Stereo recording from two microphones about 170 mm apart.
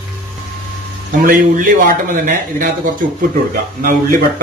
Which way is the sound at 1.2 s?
55° right (ahead or behind).